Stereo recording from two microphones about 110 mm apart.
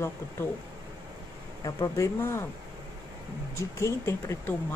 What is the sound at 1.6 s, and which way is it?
Speech, 30° left (ahead or behind).